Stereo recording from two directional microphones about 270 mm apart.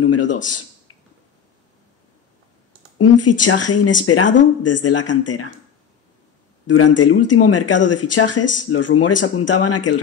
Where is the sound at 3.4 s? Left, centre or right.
Left.